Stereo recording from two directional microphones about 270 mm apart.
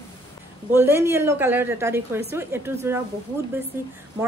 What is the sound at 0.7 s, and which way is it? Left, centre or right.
Speech, centre.